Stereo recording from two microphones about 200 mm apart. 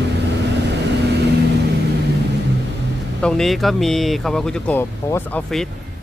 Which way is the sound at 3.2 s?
5° left (ahead or behind).